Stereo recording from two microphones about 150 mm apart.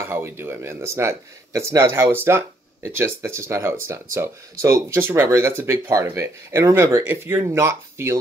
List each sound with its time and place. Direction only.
0.0 s speech: 15° right (ahead or behind)